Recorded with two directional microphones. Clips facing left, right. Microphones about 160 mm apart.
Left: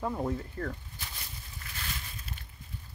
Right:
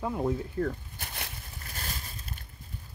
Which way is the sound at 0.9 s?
60° right (ahead or behind).